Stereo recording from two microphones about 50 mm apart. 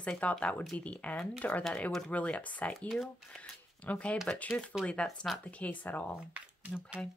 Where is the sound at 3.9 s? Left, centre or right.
Left.